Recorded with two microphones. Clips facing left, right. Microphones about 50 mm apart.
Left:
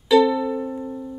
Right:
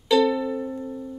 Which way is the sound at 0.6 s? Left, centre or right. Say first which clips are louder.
Left 2 dB; left.